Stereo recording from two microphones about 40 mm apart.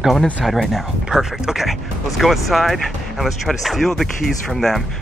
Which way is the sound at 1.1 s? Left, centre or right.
Centre.